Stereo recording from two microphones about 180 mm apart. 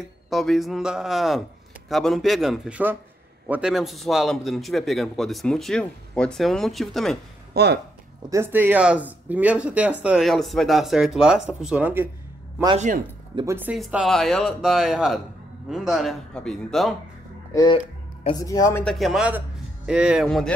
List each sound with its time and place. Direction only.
0.3 s a man's voice: centre (ahead or behind)
7.5 s speech: 65° right (ahead or behind)
8.3 s a man's voice: 15° right (ahead or behind)
12.7 s speech: 45° right (ahead or behind)
13.5 s a man's voice: 10° right (ahead or behind)
17.5 s a man's voice: 20° left (ahead or behind)
18.9 s a man's voice: centre (ahead or behind)